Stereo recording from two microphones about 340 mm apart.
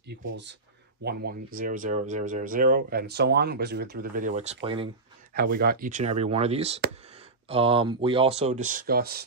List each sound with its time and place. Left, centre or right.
0.1 s speech: right
5.3 s speech: right